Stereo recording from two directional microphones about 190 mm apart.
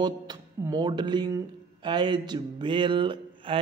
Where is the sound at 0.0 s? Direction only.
20° right (ahead or behind).